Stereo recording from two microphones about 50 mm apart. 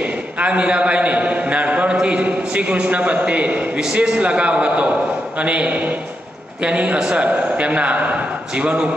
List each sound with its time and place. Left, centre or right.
0.0 s a man's voice: right